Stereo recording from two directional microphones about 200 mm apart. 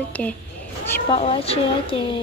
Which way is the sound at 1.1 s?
30° left (ahead or behind).